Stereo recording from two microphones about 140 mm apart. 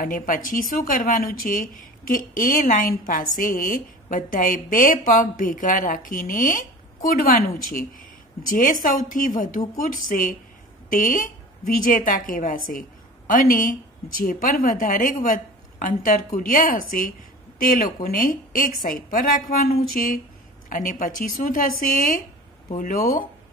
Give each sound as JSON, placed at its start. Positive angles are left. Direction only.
{"t": 0.0, "sound": "speech", "side_deg": 75}
{"t": 8.5, "sound": "speech", "side_deg": 70}
{"t": 17.6, "sound": "a woman's voice", "side_deg": 90}
{"t": 20.7, "sound": "speech", "side_deg": 70}